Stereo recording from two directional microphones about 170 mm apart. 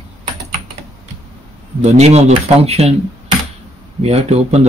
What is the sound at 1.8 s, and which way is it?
Speech, 40° right (ahead or behind).